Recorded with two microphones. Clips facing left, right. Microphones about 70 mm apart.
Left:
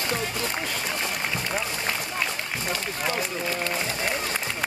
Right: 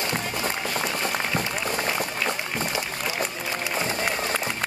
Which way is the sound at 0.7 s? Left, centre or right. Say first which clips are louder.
Right 3 dB; right.